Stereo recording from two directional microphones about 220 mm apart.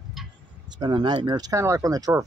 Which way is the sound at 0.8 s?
20° right (ahead or behind).